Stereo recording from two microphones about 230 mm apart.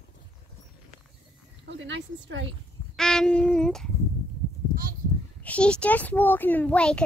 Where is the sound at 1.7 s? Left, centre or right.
Right.